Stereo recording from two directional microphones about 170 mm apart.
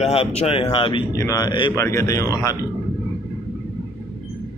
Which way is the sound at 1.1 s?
20° left (ahead or behind).